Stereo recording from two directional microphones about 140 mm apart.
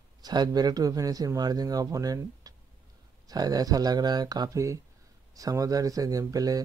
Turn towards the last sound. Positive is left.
turn(degrees=-25)  # may be behind; listen again after turning